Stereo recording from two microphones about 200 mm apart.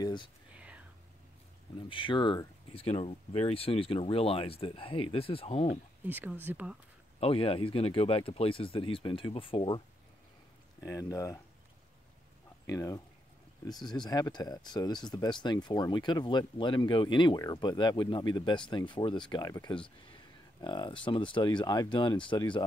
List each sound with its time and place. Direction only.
0.0 s speech: 20° left (ahead or behind)
1.8 s speech: 25° left (ahead or behind)
6.0 s speech: 10° right (ahead or behind)
7.2 s speech: 30° left (ahead or behind)
12.6 s speech: 15° left (ahead or behind)